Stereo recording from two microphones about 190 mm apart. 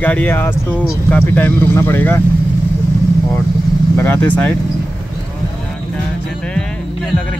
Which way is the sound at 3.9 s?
10° left (ahead or behind).